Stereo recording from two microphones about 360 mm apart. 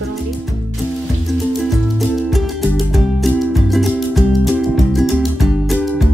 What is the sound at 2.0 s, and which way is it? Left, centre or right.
Music, centre.